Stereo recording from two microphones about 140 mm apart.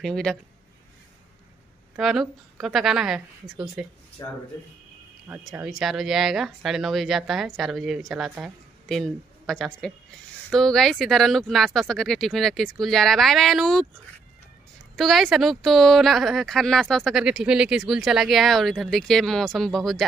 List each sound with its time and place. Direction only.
0.0 s speech: 5° left (ahead or behind)
2.0 s speech: centre (ahead or behind)
4.2 s speech: 25° left (ahead or behind)
5.3 s speech: 10° right (ahead or behind)
15.0 s speech: centre (ahead or behind)